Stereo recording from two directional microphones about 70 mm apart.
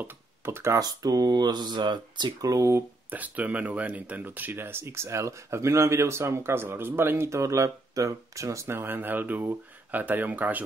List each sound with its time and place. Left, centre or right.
0.5 s speech: right
0.7 s speech: right
2.5 s speech: right
3.1 s speech: right